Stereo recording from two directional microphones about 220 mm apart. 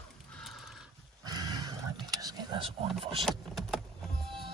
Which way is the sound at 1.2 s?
20° right (ahead or behind).